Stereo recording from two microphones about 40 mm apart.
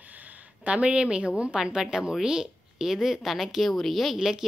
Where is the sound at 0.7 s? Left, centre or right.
Right; by 4.1 s centre.